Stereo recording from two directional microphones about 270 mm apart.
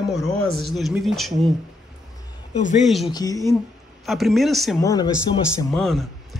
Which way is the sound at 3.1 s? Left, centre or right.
Centre.